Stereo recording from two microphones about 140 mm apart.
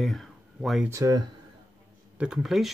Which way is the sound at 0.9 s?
25° right (ahead or behind).